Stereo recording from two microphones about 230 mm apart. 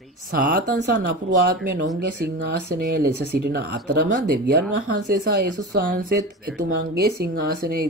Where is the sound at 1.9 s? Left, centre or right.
Right.